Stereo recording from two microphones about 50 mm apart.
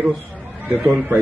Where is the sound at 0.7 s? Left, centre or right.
Right.